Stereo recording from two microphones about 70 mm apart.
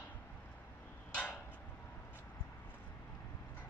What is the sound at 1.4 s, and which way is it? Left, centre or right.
Vehicle, left.